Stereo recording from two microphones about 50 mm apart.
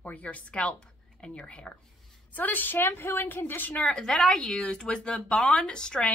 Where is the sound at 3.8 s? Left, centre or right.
Centre.